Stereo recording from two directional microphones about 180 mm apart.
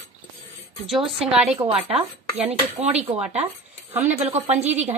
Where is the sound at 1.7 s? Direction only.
35° right (ahead or behind).